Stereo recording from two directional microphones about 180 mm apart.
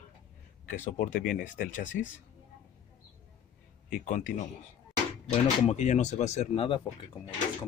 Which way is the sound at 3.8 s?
50° left (ahead or behind).